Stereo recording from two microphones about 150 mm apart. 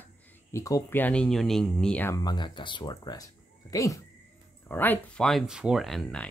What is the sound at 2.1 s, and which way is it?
Speech, 30° left (ahead or behind).